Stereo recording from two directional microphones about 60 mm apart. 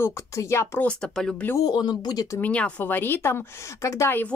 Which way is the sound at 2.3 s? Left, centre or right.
Left.